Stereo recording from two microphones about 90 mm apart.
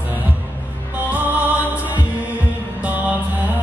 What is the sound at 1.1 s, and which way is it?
Music, 15° right (ahead or behind).